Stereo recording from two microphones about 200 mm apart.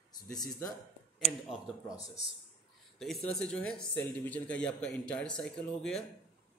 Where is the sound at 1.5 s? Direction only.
5° right (ahead or behind).